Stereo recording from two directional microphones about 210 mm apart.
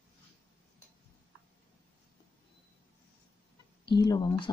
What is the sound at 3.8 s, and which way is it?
Speech, 20° left (ahead or behind).